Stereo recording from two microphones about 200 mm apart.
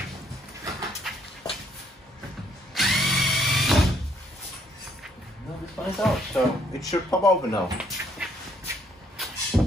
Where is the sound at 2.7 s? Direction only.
Centre (ahead or behind).